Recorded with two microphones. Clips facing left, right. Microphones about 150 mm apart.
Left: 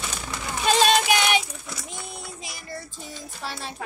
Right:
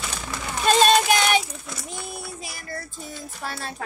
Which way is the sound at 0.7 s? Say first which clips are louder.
Right 2 dB; 10° left (ahead or behind).